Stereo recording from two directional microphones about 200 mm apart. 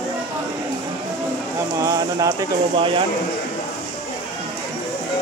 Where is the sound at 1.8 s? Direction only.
15° right (ahead or behind).